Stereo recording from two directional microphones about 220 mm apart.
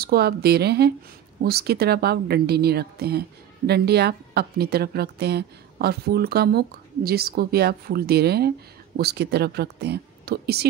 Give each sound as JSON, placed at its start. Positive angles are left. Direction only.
{"t": 0.0, "sound": "speech", "side_deg": -45}